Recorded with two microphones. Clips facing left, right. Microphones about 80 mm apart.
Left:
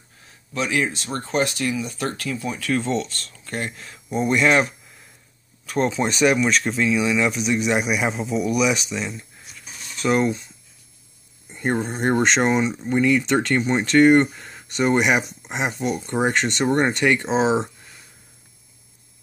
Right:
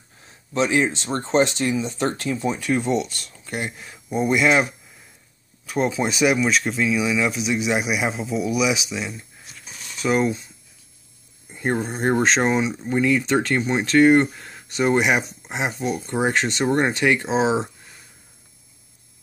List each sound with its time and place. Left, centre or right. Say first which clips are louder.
0.5 s speech: right 3 dB; right; by 17.6 s centre